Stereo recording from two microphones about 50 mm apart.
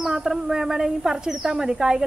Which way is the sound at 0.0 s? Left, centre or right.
Centre.